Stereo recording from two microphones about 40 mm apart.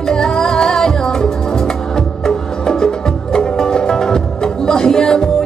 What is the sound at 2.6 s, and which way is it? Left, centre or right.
Music, centre.